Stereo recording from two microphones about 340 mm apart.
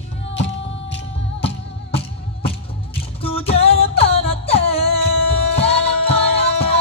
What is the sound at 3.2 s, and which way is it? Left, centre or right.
Music, centre.